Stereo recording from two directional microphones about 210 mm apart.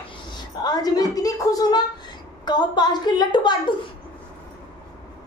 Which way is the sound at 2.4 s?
20° left (ahead or behind).